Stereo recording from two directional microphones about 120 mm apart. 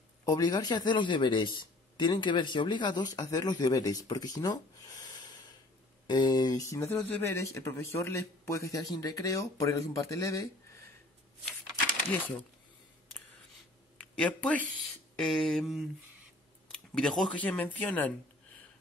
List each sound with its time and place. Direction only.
0.2 s speech: 30° left (ahead or behind)
6.0 s speech: 35° left (ahead or behind)
13.9 s speech: 10° left (ahead or behind)
15.1 s a sound: centre (ahead or behind)
16.6 s speech: 5° left (ahead or behind)